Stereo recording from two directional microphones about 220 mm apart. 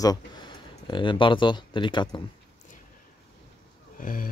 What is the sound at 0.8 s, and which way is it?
Speech, 20° left (ahead or behind).